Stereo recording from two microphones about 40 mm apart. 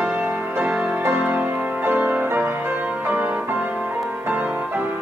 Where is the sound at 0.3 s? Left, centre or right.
Right.